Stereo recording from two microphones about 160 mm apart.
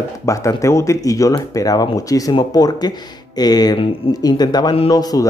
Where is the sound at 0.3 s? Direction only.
20° left (ahead or behind).